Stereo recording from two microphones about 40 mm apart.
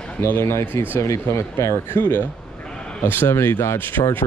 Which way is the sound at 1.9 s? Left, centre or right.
Left.